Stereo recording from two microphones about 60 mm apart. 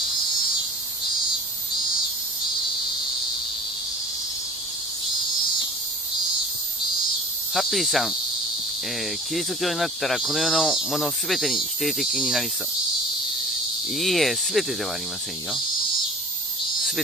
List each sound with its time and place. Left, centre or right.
7.5 s speech: centre
9.3 s speech: centre
13.9 s speech: centre